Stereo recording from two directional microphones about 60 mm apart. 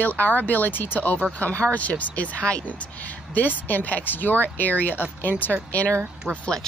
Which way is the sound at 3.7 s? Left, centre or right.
Left.